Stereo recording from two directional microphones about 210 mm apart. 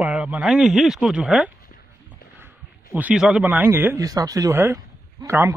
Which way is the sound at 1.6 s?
45° left (ahead or behind).